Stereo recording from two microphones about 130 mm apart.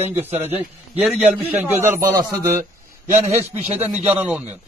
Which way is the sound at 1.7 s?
20° right (ahead or behind).